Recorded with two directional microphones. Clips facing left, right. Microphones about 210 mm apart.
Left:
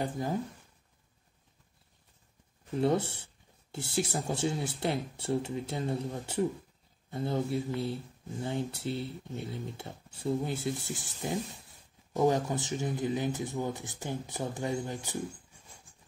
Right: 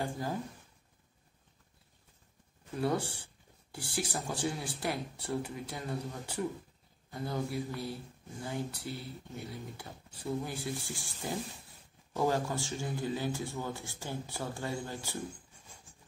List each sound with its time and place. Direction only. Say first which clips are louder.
2.7 s speech: left 4 dB; 25° left (ahead or behind)